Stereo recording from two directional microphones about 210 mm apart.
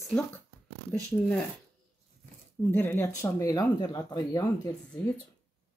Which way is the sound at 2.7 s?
10° left (ahead or behind).